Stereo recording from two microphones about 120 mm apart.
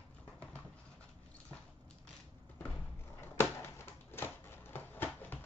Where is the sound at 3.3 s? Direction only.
20° left (ahead or behind).